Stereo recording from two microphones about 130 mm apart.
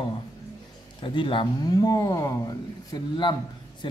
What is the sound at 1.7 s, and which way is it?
A man's voice, 30° left (ahead or behind).